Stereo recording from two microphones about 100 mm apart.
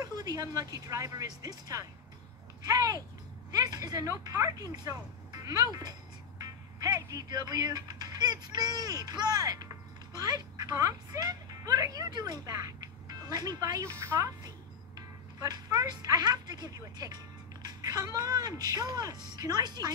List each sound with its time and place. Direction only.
0.0 s a woman's voice: 40° right (ahead or behind)